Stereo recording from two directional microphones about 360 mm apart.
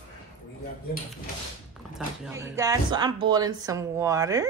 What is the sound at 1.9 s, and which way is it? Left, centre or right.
Speech, centre.